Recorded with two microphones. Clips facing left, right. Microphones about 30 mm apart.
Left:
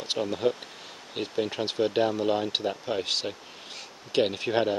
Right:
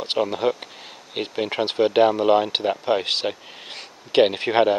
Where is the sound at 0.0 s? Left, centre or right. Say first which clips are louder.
Right 5 dB; right.